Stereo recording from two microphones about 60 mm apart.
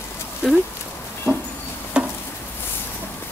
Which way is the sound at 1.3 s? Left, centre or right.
Centre.